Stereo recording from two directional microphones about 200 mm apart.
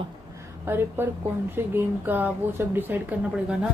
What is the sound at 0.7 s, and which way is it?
Speech, 10° right (ahead or behind).